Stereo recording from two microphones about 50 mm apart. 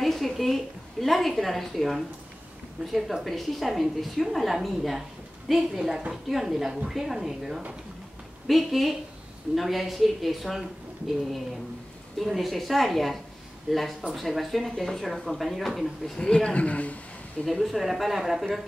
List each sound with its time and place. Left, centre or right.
0.0 s a woman's voice: centre
12.2 s speech: centre
16.2 s a man's voice: centre
17.5 s speech: centre